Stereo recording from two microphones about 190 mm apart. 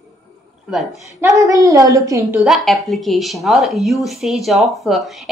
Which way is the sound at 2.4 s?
Centre (ahead or behind).